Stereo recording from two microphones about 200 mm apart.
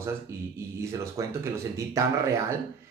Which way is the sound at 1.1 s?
15° right (ahead or behind).